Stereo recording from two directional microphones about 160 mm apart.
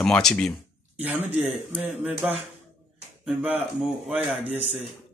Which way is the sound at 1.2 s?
45° right (ahead or behind).